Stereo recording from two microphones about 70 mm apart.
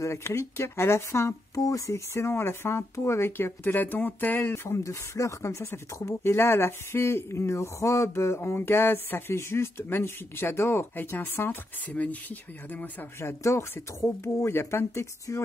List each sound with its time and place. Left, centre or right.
0.0 s speech: left
1.6 s speech: left
4.6 s speech: left
13.2 s speech: left